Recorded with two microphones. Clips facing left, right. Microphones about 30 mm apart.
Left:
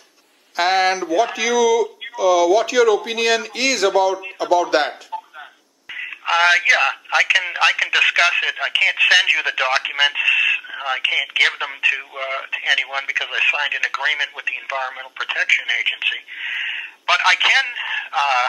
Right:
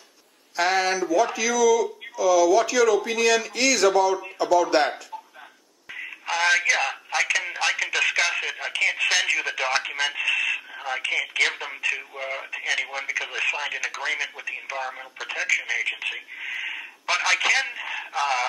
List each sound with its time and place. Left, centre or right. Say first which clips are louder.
0.6 s speech: left 5 dB; left
5.9 s speech: left 8 dB; left